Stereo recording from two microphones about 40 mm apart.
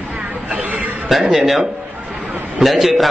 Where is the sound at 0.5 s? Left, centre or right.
Right.